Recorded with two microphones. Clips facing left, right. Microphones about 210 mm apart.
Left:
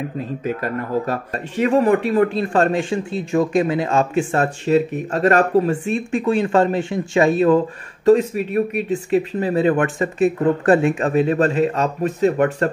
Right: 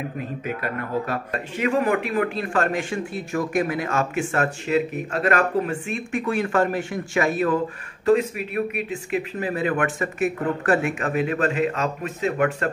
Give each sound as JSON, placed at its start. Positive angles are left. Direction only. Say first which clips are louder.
{"t": 0.5, "sound": "a man's voice", "louder": "left 5 dB", "side_deg": 40}